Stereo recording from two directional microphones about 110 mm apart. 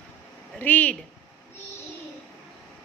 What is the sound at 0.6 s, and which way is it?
Speech, 15° left (ahead or behind).